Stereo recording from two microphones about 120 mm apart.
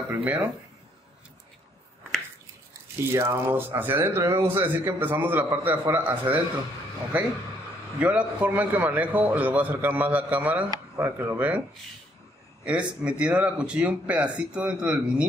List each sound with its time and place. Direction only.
0.1 s speech: 10° right (ahead or behind)
3.1 s a man's voice: 20° right (ahead or behind)
12.6 s a man's voice: 10° right (ahead or behind)